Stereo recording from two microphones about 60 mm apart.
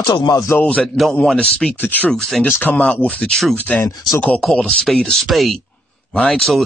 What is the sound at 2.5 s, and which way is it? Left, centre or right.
Speech, left.